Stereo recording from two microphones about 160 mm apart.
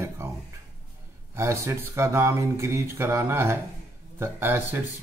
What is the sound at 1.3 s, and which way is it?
Speech, 15° right (ahead or behind).